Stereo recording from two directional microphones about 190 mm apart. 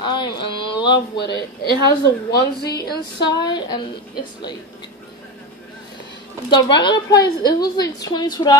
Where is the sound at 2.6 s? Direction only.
60° left (ahead or behind).